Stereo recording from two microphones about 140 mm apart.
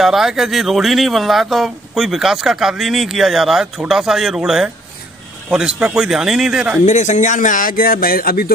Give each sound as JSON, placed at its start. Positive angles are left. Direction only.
{"t": 0.0, "sound": "speech", "side_deg": -5}
{"t": 6.9, "sound": "speech", "side_deg": 55}